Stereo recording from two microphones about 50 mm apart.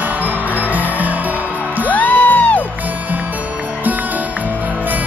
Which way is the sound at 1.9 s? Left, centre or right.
Left.